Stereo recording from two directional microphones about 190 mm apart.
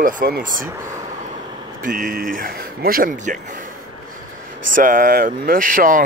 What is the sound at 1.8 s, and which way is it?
Speech, 45° right (ahead or behind).